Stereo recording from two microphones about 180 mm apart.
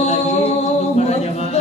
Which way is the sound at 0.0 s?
40° left (ahead or behind).